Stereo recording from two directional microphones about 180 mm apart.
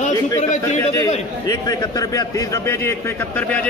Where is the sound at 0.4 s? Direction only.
40° left (ahead or behind).